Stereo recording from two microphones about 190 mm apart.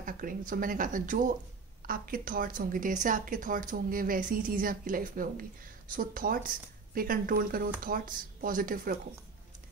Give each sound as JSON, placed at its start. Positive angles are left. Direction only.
{"t": 0.0, "sound": "a woman's voice", "side_deg": -45}